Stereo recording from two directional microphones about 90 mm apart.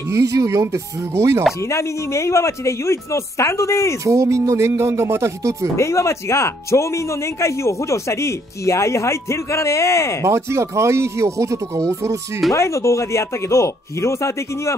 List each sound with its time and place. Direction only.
0.1 s speech: 35° right (ahead or behind)
1.7 s speech: 30° left (ahead or behind)
4.0 s speech: 35° right (ahead or behind)
5.8 s speech: 30° left (ahead or behind)
10.2 s speech: 30° right (ahead or behind)
12.5 s speech: 35° left (ahead or behind)